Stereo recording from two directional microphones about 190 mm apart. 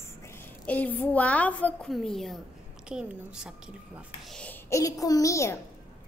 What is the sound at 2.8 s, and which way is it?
A woman's voice, 5° right (ahead or behind).